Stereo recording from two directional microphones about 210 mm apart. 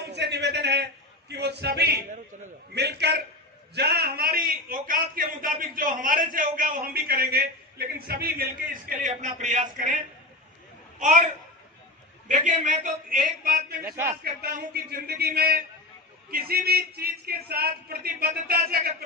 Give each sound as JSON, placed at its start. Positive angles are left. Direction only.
{"t": 0.0, "sound": "a man's voice", "side_deg": -55}
{"t": 11.0, "sound": "a man's voice", "side_deg": -35}
{"t": 12.3, "sound": "a man's voice", "side_deg": -35}
{"t": 13.8, "sound": "a man's voice", "side_deg": -10}
{"t": 14.2, "sound": "a man's voice", "side_deg": -45}